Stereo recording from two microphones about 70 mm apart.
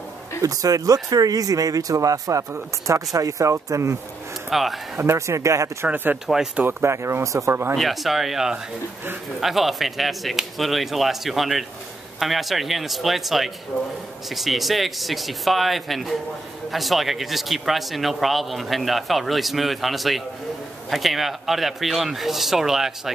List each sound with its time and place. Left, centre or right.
0.4 s speech: right
4.5 s a man's voice: centre
4.9 s speech: right
6.2 s speech: centre
6.6 s speech: right
7.7 s speech: centre